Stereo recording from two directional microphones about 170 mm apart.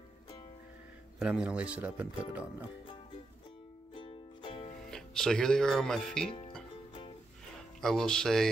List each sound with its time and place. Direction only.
1.2 s speech: 5° right (ahead or behind)
3.9 s music: 30° left (ahead or behind)
4.9 s speech: 5° left (ahead or behind)
7.8 s speech: centre (ahead or behind)